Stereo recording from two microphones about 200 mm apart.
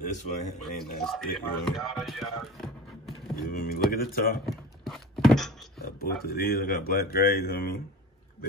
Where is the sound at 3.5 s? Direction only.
45° left (ahead or behind).